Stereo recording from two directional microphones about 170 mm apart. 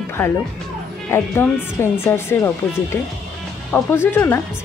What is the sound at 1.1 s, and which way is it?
Speech, 15° left (ahead or behind).